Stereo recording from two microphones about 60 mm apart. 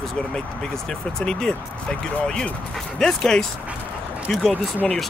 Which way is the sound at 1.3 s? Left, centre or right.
Centre.